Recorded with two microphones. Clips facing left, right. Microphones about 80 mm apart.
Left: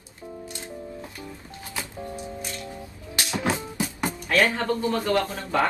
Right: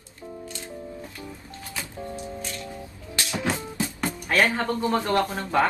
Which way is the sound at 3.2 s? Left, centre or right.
Left.